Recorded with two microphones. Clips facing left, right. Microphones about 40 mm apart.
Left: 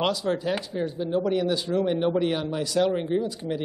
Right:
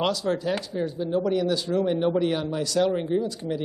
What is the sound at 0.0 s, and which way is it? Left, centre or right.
Speech, centre.